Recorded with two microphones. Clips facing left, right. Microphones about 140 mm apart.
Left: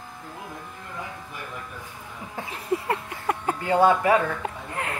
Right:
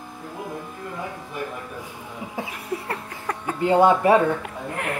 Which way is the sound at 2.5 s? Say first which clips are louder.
Left 3 dB; 20° left (ahead or behind).